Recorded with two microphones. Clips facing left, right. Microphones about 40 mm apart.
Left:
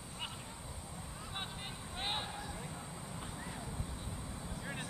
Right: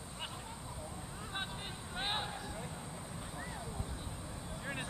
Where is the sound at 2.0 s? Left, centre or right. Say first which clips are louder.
Right 2 dB; centre.